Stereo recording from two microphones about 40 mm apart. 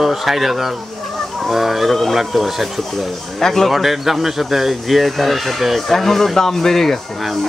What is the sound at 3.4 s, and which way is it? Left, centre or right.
Speech, centre.